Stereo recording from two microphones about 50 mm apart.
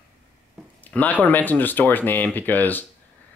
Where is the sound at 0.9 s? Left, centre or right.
Left.